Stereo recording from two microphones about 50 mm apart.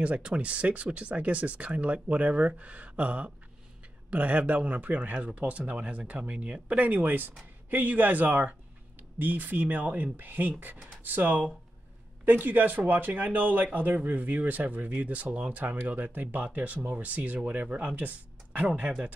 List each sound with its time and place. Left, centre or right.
0.0 s speech: right